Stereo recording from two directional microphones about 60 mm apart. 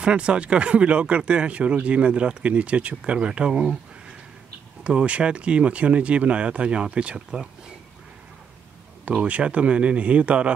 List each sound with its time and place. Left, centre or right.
0.0 s speech: centre
4.8 s speech: centre
9.1 s speech: centre